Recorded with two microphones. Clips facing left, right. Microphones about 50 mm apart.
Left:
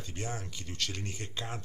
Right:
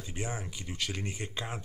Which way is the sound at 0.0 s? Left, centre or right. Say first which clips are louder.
Right 1 dB; centre.